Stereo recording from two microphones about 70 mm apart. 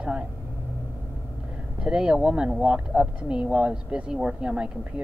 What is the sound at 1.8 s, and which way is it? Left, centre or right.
Speech, centre.